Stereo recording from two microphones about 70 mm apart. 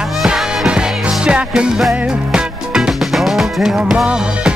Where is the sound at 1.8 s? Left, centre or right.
Centre.